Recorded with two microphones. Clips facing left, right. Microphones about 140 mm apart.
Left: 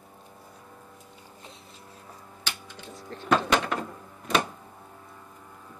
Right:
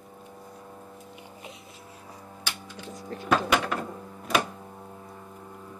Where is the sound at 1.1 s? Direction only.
15° right (ahead or behind).